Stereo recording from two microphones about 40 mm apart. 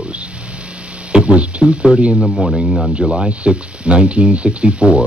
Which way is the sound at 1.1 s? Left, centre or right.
Right.